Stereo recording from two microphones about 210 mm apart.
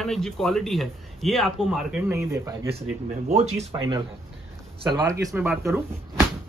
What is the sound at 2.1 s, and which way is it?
Speech, 15° right (ahead or behind).